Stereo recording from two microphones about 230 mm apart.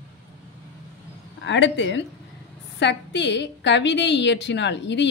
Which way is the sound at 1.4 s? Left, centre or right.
Left.